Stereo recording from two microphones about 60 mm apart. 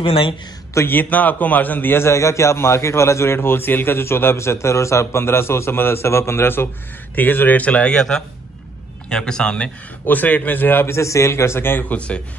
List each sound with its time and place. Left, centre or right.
0.7 s a man's voice: left; by 9.7 s centre
10.0 s speech: left
10.9 s a man's voice: left